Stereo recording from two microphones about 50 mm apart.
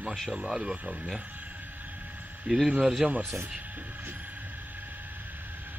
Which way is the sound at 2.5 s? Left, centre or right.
Centre.